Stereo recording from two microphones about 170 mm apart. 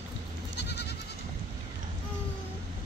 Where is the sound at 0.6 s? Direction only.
80° left.